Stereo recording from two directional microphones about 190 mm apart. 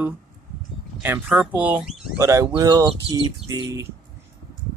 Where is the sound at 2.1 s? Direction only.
15° right (ahead or behind).